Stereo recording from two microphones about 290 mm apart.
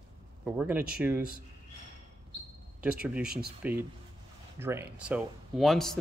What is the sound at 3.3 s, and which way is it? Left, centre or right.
Speech, right.